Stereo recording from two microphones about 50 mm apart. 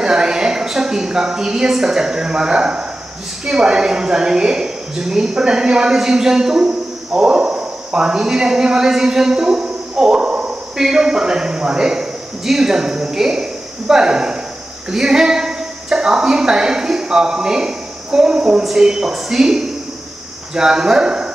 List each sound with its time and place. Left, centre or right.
0.0 s a woman's voice: centre